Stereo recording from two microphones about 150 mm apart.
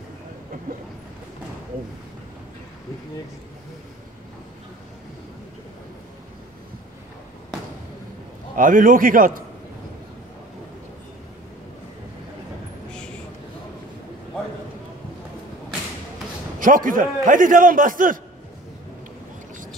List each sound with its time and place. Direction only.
8.5 s a man's voice: 65° right (ahead or behind)
16.5 s a man's voice: 65° right (ahead or behind)